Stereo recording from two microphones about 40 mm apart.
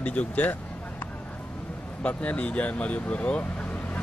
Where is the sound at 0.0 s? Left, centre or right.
Left.